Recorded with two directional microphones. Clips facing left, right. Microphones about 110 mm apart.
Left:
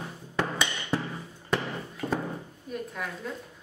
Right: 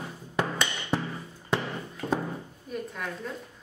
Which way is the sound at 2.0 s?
10° left (ahead or behind).